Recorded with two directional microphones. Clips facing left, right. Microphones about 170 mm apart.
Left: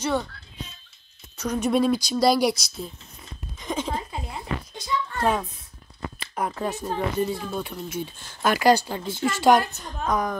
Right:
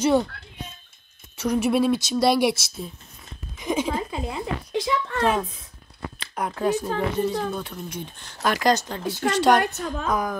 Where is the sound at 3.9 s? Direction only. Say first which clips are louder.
Right 4 dB; 90° right.